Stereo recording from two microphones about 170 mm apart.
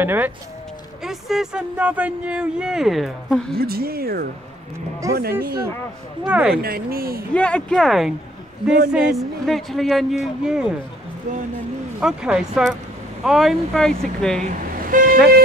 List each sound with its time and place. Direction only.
0.0 s speech: 10° right (ahead or behind)
3.5 s speech: 65° right (ahead or behind)
5.0 s speech: 20° right (ahead or behind)
5.4 s speech: 65° right (ahead or behind)
6.2 s speech: 5° right (ahead or behind)
6.6 s speech: 60° right (ahead or behind)
7.3 s speech: 5° left (ahead or behind)
12.0 s speech: 5° right (ahead or behind)
14.4 s toot: 50° right (ahead or behind)